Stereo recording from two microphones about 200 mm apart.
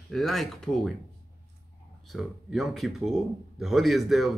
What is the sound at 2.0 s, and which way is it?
Speech, centre (ahead or behind).